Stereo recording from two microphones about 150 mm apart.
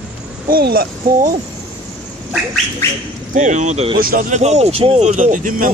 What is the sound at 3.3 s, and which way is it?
Speech, 55° right (ahead or behind).